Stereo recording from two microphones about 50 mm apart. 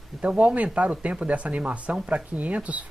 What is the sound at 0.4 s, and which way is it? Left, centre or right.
Speech, right.